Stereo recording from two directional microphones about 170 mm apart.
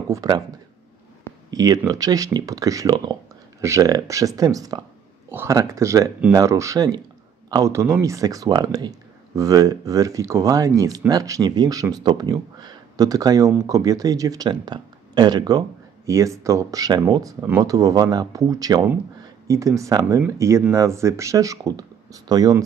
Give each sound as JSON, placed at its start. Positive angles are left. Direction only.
{"t": 0.1, "sound": "speech", "side_deg": -20}
{"t": 1.5, "sound": "speech", "side_deg": -20}